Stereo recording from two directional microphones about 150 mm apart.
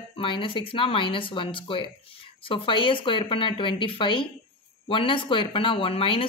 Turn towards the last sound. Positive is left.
turn(degrees=35)  # may be behind; listen again after turning